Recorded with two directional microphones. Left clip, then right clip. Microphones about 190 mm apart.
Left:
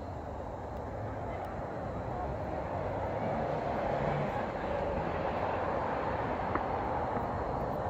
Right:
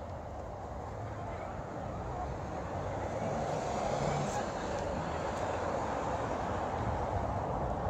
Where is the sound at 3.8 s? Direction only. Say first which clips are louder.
Left 1 dB; 50° right (ahead or behind).